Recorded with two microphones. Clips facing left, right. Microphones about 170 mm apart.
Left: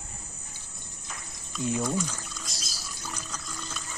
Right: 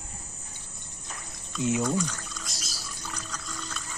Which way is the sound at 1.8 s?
5° left (ahead or behind).